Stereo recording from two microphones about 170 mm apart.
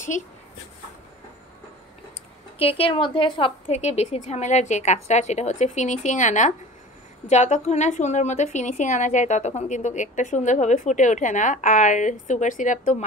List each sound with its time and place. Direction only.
2.6 s a woman's voice: 35° left (ahead or behind)